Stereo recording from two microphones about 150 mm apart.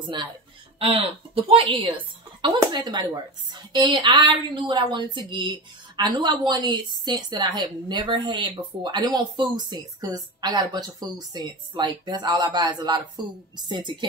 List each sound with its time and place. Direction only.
0.0 s a woman's voice: 30° right (ahead or behind)